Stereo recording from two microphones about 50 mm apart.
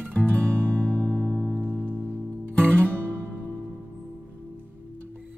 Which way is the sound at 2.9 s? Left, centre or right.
Right.